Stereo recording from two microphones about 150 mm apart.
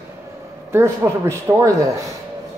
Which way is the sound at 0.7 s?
20° right (ahead or behind).